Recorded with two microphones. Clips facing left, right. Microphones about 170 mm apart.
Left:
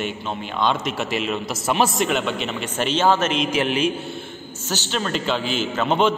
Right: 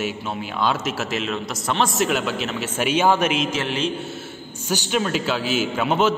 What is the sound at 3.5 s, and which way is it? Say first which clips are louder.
Speech: left 4 dB; 15° left (ahead or behind).